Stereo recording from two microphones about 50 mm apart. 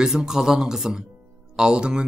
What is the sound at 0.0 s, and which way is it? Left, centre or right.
Speech, centre.